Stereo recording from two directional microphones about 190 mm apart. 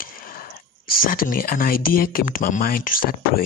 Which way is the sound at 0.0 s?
50° left (ahead or behind).